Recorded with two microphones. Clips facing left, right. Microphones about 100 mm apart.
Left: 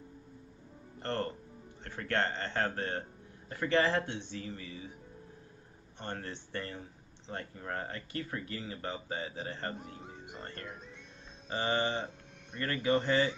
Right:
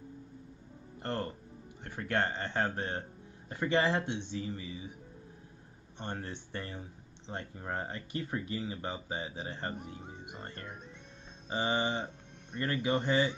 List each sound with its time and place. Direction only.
0.9 s music: 15° right (ahead or behind)
1.9 s speech: 15° right (ahead or behind)
5.9 s speech: 15° right (ahead or behind)